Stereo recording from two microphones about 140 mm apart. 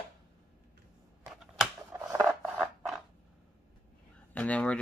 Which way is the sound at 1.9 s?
15° right (ahead or behind).